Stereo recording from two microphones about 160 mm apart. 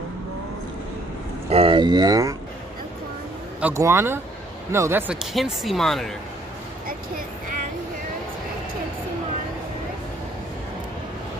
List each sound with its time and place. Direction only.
1.5 s speech: 35° right (ahead or behind)
3.6 s speech: 15° right (ahead or behind); by 6.1 s centre (ahead or behind)